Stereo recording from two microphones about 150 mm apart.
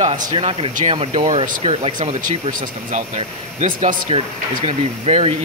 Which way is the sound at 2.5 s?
60° right (ahead or behind).